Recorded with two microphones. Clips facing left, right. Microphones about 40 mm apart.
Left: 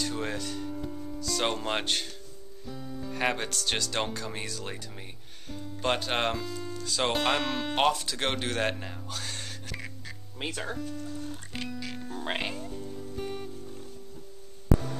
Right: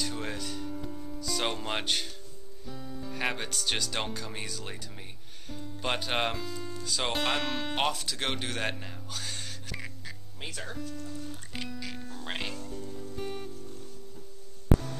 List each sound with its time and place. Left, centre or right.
0.0 s music: centre
2.6 s speech: centre
10.5 s speech: centre
11.1 s music: centre
12.1 s speech: centre
12.8 s music: centre